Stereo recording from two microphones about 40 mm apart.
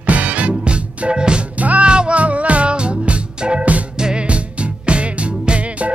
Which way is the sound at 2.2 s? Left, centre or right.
Right.